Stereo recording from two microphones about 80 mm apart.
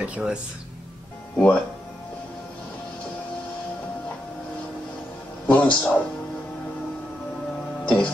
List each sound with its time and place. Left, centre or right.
0.0 s speech: centre
1.3 s speech: centre
5.5 s a man's voice: centre
7.8 s music: centre